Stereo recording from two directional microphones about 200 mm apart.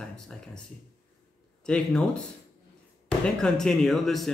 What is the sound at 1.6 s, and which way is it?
Speech, 5° left (ahead or behind).